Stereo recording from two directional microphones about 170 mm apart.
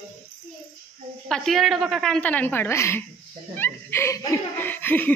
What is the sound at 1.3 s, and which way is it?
A woman's voice, 5° left (ahead or behind).